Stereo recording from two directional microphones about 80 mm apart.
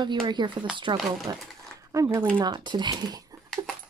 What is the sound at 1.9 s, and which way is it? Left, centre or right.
Speech, right.